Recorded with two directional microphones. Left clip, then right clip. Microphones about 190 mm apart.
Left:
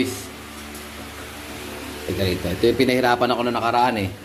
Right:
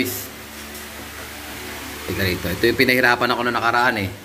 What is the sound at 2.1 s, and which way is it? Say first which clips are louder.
A man's voice: right 1 dB; centre (ahead or behind).